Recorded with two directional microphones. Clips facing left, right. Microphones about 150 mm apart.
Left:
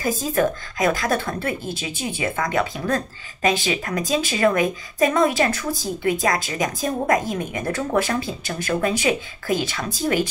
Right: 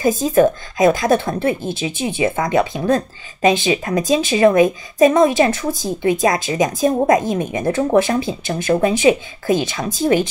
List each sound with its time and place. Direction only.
0.0 s a woman's voice: 20° right (ahead or behind)